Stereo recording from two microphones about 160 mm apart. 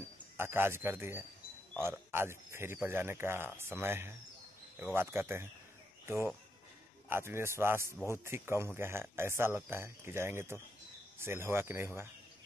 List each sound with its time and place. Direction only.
0.4 s speech: 15° right (ahead or behind)